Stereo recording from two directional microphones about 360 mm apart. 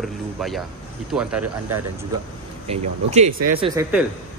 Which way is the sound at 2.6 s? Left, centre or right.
Centre.